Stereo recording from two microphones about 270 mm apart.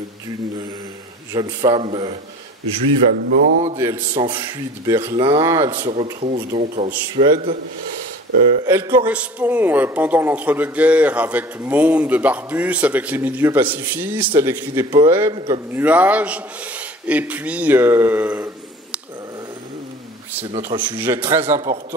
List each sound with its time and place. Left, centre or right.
1.3 s a man's voice: centre
3.2 s a sound: right
3.7 s a man's voice: centre
8.6 s a man's voice: centre
15.8 s a man's voice: centre
20.6 s a man's voice: centre